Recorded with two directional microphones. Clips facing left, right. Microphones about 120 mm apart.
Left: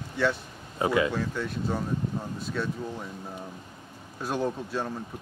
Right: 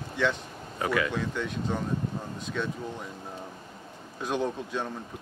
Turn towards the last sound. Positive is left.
turn(degrees=5)  # may be behind; listen again after turning